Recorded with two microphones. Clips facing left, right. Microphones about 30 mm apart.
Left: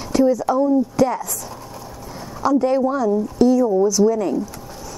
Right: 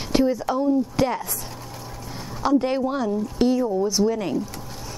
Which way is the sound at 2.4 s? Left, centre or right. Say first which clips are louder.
Left 4 dB; right.